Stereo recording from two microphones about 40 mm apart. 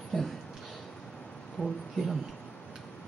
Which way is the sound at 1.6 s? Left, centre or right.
Left.